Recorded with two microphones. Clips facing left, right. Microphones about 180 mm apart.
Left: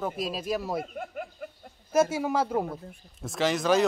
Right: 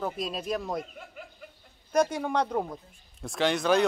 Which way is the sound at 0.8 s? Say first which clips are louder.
Left 9 dB; 50° left (ahead or behind).